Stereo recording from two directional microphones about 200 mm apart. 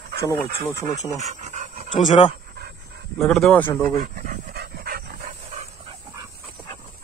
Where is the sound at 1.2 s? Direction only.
35° right (ahead or behind).